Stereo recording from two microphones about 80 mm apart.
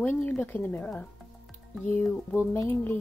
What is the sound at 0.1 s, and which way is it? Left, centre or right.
Speech, left.